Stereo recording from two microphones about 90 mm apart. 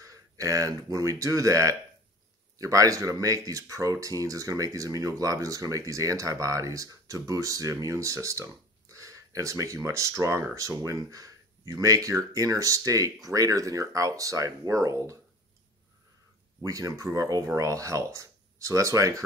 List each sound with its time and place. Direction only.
0.0 s speech: 40° right (ahead or behind)
16.6 s speech: 40° right (ahead or behind)